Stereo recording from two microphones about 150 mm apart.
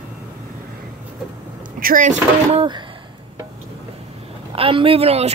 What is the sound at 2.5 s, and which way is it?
Speech, 30° right (ahead or behind).